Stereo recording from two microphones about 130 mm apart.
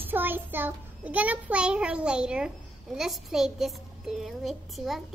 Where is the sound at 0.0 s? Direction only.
15° right (ahead or behind).